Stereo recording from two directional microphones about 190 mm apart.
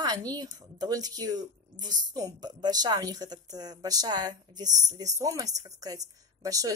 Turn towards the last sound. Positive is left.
turn(degrees=-20)  # may be behind; listen again after turning